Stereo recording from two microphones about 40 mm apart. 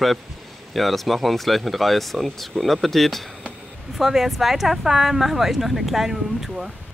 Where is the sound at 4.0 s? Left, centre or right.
Centre.